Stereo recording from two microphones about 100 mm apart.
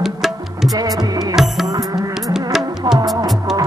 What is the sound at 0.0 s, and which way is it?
Music, 5° right (ahead or behind).